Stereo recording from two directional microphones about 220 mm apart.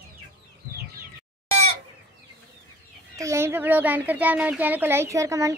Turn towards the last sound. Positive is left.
turn(degrees=-15)  # may be behind; listen again after turning